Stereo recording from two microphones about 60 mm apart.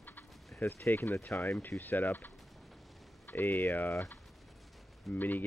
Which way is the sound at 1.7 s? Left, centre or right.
Left.